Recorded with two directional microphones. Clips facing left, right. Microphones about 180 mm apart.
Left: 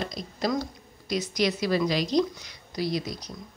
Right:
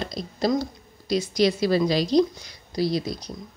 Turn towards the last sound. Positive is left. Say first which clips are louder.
# right 4 dB
turn(degrees=-30)  # may be behind; listen again after turning